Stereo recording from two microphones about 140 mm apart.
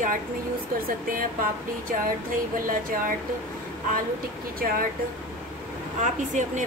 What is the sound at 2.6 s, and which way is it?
Speech, 80° right.